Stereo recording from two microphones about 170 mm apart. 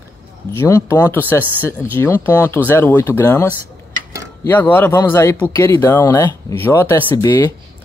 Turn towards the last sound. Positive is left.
turn(degrees=15)  # may be behind; listen again after turning